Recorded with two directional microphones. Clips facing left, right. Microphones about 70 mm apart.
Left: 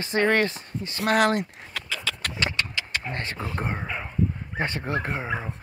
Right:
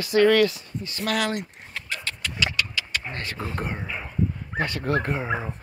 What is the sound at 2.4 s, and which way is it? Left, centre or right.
Keys jangling, left.